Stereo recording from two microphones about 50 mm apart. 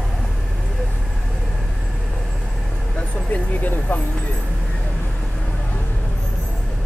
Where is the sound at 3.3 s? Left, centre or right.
Left.